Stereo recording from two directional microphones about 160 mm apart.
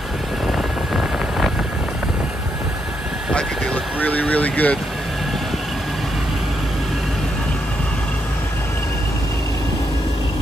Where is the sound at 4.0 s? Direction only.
10° left (ahead or behind).